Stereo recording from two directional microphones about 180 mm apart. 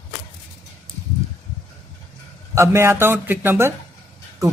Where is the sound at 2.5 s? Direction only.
15° right (ahead or behind).